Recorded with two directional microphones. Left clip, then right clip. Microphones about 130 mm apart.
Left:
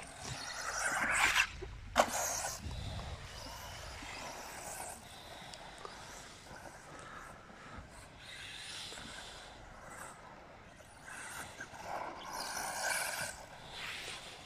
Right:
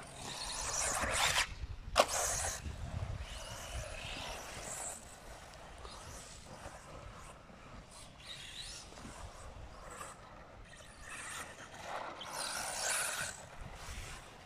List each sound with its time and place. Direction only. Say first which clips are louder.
0.2 s vehicle: right 1 dB; 25° right (ahead or behind)
1.1 s zipper: left 3 dB; 40° right (ahead or behind)
2.0 s vehicle: even; 5° right (ahead or behind)
4.2 s vehicle: right 1 dB; 10° left (ahead or behind)
11.1 s vehicle: even; 5° right (ahead or behind)